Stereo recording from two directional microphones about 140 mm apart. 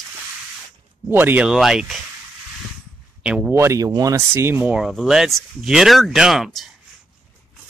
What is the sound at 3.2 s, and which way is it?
Speech, 5° right (ahead or behind).